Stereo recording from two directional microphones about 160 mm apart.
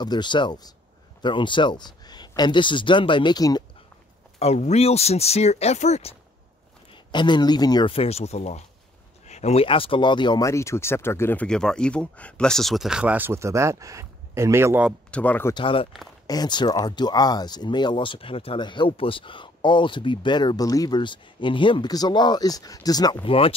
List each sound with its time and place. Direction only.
0.0 s speech: 25° left (ahead or behind)
4.4 s speech: 45° left (ahead or behind)
6.9 s speech: 30° left (ahead or behind); by 14.9 s 15° right (ahead or behind)
14.9 s speech: 5° left (ahead or behind)
15.5 s speech: 35° left (ahead or behind)
23.2 s speech: 35° left (ahead or behind)